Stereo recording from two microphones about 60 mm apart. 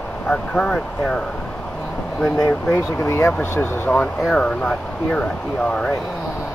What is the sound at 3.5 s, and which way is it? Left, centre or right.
Speech, left.